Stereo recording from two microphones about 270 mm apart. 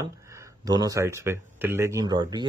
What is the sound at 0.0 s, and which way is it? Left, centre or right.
Speech, centre.